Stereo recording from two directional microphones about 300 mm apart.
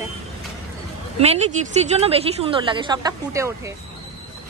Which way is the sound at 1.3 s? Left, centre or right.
Right.